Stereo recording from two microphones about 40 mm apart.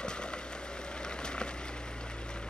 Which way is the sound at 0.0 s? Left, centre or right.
Left.